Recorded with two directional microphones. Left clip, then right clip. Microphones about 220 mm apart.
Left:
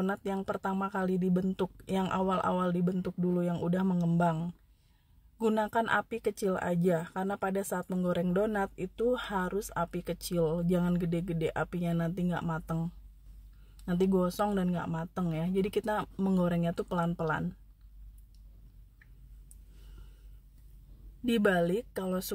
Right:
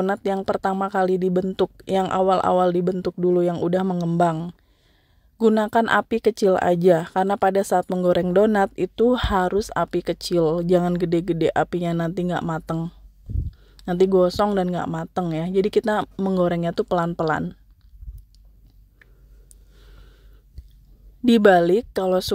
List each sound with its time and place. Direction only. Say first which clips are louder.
0.0 s speech: right 11 dB; 30° right (ahead or behind)
21.3 s speech: right 13 dB; 35° right (ahead or behind)